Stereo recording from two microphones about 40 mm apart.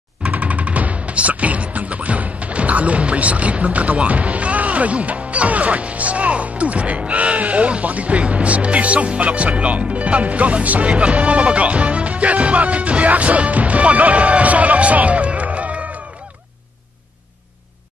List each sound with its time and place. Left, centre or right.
0.3 s speech: right